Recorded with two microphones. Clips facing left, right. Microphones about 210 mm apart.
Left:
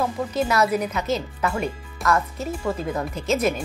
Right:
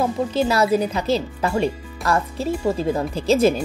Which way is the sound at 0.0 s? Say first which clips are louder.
Right 4 dB; 30° right (ahead or behind).